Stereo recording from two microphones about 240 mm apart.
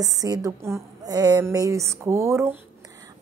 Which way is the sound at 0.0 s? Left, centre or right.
Centre.